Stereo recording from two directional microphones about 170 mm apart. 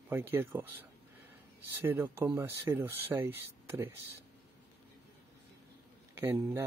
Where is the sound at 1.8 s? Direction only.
15° right (ahead or behind).